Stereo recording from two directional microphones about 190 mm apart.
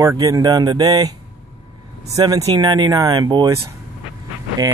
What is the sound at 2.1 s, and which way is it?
Speech, 20° right (ahead or behind).